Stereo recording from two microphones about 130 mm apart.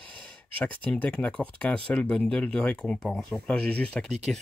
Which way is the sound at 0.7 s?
10° left (ahead or behind).